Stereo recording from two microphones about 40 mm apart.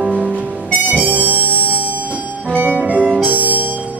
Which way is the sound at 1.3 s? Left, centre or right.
Left.